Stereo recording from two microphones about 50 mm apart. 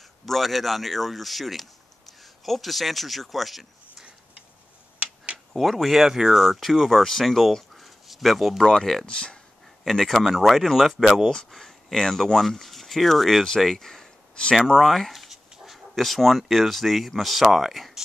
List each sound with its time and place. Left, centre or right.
0.2 s speech: centre
4.9 s a sound: right
5.5 s speech: centre
9.8 s speech: centre